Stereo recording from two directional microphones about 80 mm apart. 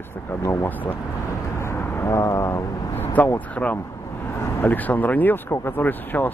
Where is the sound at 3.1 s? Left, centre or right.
Left.